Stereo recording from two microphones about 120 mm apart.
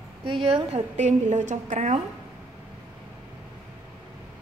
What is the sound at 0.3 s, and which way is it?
A woman's voice, 45° right (ahead or behind).